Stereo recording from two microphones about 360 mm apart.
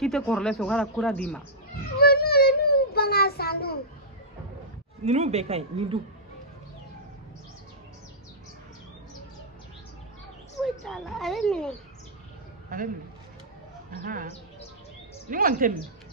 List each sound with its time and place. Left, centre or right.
0.0 s speech: centre
2.0 s child singing: left
5.0 s speech: centre
10.6 s speech: centre
12.6 s a man's voice: right
13.9 s speech: right
15.2 s speech: right